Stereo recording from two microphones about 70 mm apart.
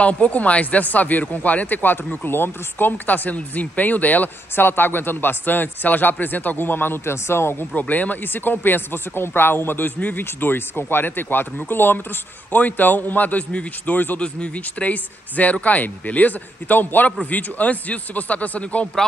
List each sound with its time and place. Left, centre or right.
0.0 s speech: centre; by 7.6 s left
7.7 s speech: left